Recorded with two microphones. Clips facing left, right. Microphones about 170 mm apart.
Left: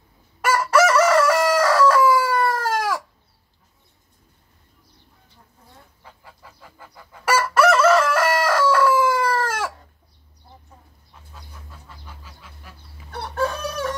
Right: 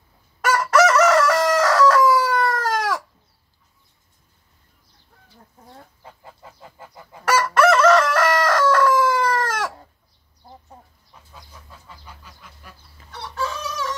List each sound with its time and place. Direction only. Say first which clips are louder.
0.4 s crowing: right 1 dB; 10° left (ahead or behind)
6.0 s goose: right 1 dB; 25° right (ahead or behind)
7.2 s crowing: right 1 dB; 5° left (ahead or behind)
12.3 s goose: even; centre (ahead or behind)
13.1 s chicken: left 4 dB; 55° left (ahead or behind)